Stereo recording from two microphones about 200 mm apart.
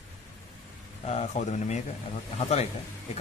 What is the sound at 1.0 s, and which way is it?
A man's voice, 35° left (ahead or behind).